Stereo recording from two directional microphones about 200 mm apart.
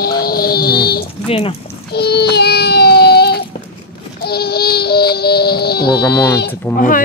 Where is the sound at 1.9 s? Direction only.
55° left (ahead or behind).